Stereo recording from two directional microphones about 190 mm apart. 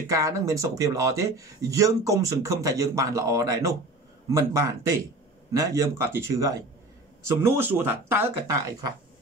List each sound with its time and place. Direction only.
0.0 s speech: 15° right (ahead or behind)